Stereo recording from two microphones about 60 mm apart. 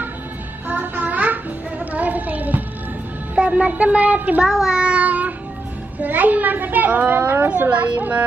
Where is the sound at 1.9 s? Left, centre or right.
Right.